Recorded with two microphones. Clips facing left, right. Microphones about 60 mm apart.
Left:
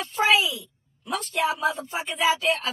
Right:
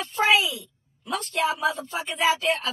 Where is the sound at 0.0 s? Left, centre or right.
Centre.